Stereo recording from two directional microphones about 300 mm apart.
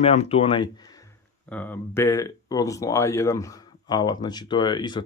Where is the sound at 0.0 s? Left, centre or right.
Centre.